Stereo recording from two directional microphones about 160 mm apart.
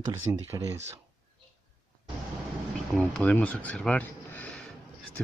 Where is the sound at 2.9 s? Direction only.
5° left (ahead or behind).